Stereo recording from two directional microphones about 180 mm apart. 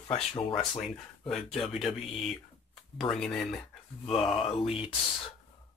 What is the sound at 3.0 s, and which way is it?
Speech, 5° left (ahead or behind).